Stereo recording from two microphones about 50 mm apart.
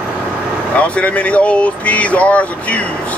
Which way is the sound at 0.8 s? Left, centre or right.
Left.